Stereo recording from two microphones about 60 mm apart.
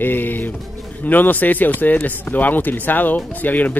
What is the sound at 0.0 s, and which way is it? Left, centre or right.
Pigeon, left.